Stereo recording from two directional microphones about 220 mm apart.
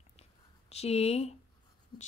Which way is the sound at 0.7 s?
30° left (ahead or behind).